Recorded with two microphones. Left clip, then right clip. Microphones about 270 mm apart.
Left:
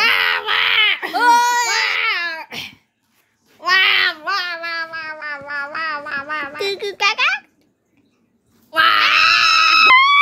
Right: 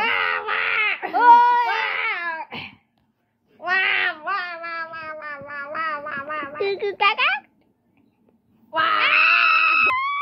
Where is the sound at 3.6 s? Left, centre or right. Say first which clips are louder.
Left 6 dB; left.